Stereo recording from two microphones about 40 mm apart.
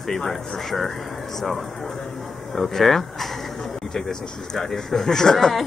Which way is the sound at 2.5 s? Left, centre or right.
Centre.